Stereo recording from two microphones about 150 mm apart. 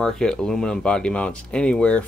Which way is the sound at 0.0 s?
5° left (ahead or behind).